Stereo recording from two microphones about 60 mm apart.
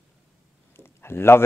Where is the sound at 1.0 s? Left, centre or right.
Left.